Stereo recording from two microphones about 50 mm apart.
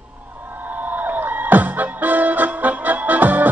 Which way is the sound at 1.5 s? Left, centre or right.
Right.